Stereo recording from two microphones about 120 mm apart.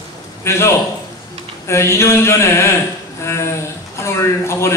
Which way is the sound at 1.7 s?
20° left (ahead or behind).